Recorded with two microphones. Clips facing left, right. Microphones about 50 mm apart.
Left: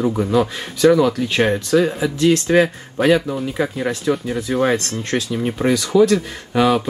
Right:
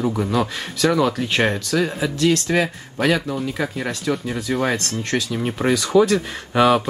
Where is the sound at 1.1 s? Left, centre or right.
Right.